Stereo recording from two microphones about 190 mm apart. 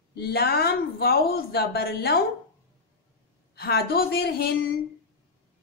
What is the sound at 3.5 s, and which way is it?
A woman's voice, 55° left (ahead or behind).